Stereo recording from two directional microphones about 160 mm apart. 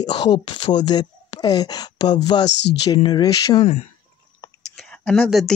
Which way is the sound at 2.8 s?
30° left (ahead or behind).